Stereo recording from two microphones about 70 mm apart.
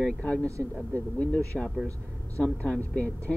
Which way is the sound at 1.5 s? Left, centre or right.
Centre.